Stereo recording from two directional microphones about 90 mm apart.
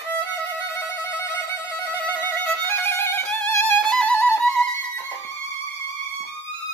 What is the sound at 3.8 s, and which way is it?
Music, 10° left (ahead or behind).